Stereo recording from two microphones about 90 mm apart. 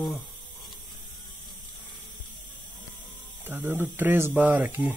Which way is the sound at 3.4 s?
20° right (ahead or behind).